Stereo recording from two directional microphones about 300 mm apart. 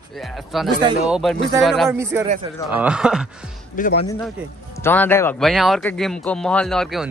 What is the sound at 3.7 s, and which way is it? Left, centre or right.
Speech, left.